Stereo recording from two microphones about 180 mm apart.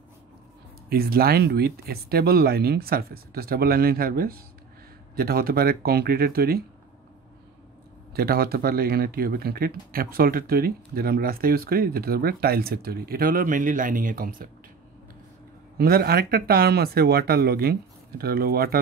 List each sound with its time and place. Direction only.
0.8 s speech: 55° right (ahead or behind)
8.1 s speech: 60° right (ahead or behind)
15.8 s speech: 60° right (ahead or behind)